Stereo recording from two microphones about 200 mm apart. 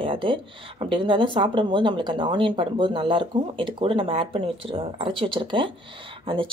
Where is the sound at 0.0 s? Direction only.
25° right (ahead or behind).